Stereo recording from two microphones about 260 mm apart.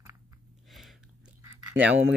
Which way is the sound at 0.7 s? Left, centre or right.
Centre.